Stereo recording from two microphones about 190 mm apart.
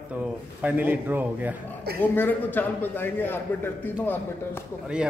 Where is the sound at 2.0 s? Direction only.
10° left (ahead or behind).